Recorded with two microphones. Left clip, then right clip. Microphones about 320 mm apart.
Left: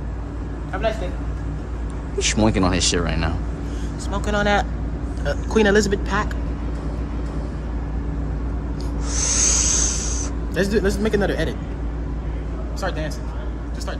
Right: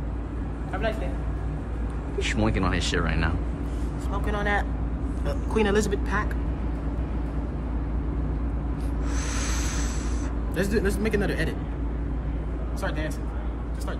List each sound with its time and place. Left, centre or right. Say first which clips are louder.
0.8 s speech: left 6 dB; centre
2.1 s speech: left 7 dB; centre
4.1 s speech: left 7 dB; left
9.1 s a sound: left 13 dB; centre
12.8 s speech: left 5 dB; centre